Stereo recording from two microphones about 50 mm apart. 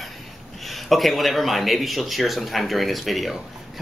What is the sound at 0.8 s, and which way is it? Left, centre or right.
Speech, centre.